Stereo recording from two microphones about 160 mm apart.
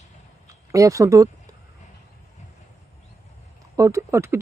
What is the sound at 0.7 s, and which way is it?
Speech, 20° right (ahead or behind).